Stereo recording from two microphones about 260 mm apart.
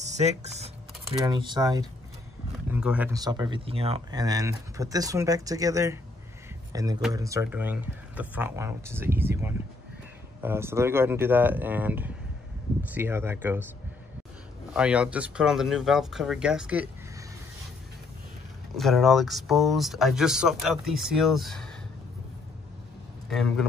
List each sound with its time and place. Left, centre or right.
1.2 s speech: centre
2.7 s speech: centre
14.7 s speech: centre
18.8 s speech: centre
23.2 s a man's voice: centre